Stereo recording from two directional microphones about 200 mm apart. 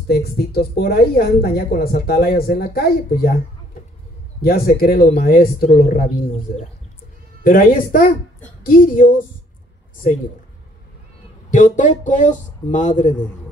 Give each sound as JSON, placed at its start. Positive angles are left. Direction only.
{"t": 0.1, "sound": "a woman's voice", "side_deg": 50}
{"t": 4.4, "sound": "a woman's voice", "side_deg": 50}
{"t": 7.4, "sound": "a woman's voice", "side_deg": 45}
{"t": 11.5, "sound": "speech", "side_deg": 40}